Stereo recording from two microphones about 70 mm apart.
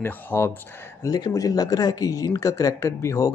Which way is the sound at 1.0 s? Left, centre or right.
Left.